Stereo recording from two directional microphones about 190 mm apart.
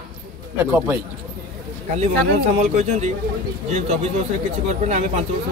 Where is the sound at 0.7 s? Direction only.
10° right (ahead or behind).